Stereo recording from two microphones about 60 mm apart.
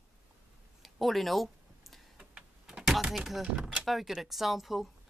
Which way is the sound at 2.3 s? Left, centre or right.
Centre.